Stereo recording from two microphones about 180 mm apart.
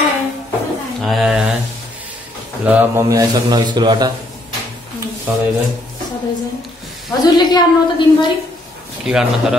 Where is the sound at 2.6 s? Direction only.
10° right (ahead or behind).